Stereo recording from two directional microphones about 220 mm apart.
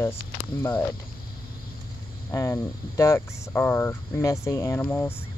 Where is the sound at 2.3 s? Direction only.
15° left (ahead or behind).